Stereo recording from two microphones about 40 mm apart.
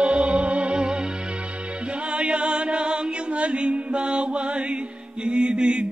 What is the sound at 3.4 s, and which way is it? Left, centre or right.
Mantra, right.